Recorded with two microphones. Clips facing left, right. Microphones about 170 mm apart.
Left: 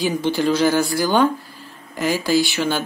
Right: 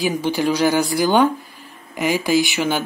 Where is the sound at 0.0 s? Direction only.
10° right (ahead or behind).